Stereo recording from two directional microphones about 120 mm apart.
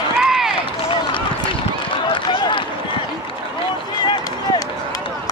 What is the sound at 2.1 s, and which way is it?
Run, 45° left (ahead or behind).